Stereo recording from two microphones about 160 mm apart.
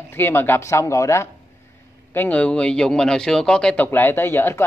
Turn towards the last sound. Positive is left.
turn(degrees=15)  # may be behind; listen again after turning